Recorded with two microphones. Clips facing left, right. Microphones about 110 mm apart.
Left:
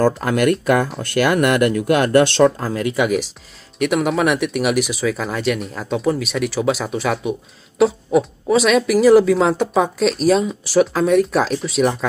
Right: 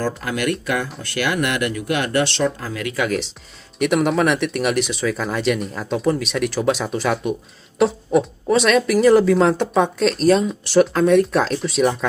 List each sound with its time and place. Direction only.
0.0 s speech: 50° left (ahead or behind)
2.9 s speech: 15° left (ahead or behind)
3.7 s speech: centre (ahead or behind)